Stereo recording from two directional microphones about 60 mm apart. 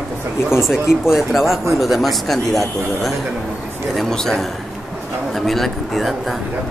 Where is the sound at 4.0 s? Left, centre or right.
Centre.